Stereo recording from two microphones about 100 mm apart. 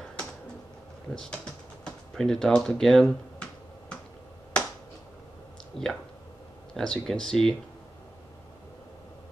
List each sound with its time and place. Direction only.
1.1 s speech: 10° left (ahead or behind)
5.7 s speech: 70° left (ahead or behind)
6.7 s speech: 5° left (ahead or behind)